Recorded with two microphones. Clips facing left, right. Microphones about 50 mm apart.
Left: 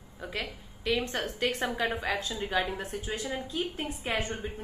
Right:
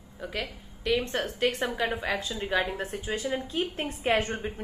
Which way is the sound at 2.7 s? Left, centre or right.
Right.